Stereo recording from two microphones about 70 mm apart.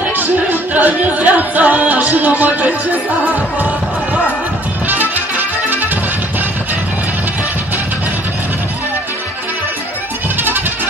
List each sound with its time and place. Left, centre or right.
0.1 s music: right